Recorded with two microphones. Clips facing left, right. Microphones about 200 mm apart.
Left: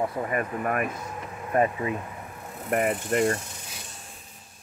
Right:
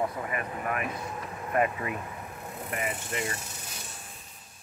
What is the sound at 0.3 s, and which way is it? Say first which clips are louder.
Speech: left 5 dB; 45° left (ahead or behind).